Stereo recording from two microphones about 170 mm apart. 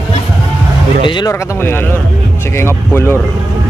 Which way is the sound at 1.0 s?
25° left (ahead or behind).